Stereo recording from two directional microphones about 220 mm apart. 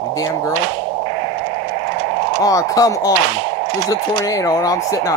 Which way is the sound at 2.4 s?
15° left (ahead or behind).